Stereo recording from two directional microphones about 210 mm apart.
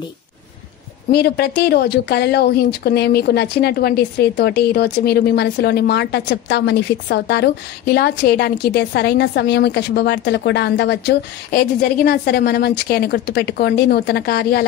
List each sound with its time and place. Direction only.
1.1 s a woman's voice: 50° left (ahead or behind)